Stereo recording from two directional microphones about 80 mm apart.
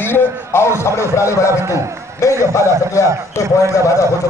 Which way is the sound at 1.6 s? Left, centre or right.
Right.